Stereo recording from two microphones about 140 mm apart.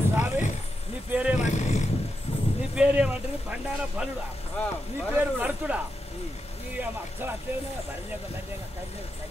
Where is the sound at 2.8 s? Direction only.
10° right (ahead or behind).